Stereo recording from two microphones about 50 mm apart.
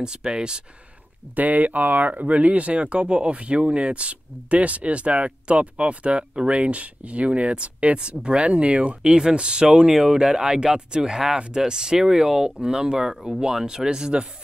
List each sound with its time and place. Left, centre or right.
0.0 s speech: centre
1.3 s speech: right; by 14.2 s centre